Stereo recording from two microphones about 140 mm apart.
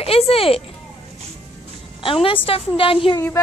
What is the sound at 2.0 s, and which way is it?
A woman's voice, 40° left (ahead or behind).